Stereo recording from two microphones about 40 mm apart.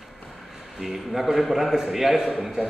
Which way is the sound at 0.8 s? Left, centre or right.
Centre.